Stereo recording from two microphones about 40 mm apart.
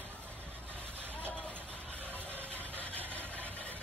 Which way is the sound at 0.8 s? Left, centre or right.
Right.